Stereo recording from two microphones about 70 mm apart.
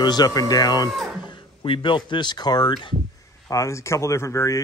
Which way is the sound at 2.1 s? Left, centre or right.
Left.